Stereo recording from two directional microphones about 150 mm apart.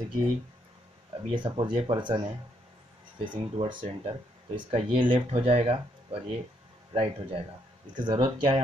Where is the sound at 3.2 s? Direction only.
30° right (ahead or behind).